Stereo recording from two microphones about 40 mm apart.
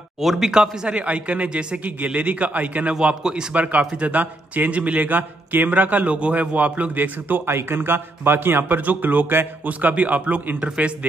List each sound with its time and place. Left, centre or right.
0.2 s speech: centre
0.5 s speech: centre
0.9 s a man's voice: right
2.1 s a man's voice: right
6.0 s a man's voice: right
7.0 s speech: right
7.4 s a man's voice: right
8.6 s speech: right
9.7 s a man's voice: right